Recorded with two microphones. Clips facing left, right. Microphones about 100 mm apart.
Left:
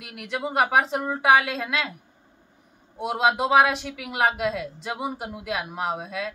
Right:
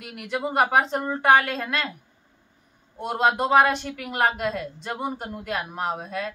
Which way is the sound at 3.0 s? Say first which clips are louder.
Even; 5° left (ahead or behind).